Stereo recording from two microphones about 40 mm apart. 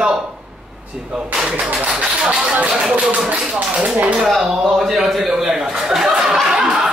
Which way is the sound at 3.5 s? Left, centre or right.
Right.